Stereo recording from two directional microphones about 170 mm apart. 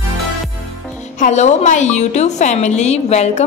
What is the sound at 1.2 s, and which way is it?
A woman's voice, 45° left (ahead or behind).